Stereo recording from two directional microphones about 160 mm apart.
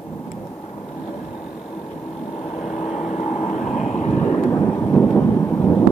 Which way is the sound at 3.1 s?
45° left (ahead or behind).